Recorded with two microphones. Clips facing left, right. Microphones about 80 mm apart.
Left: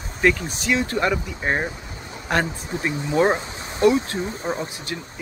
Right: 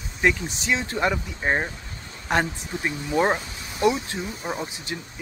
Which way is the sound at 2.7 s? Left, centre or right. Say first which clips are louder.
Left 2 dB; left.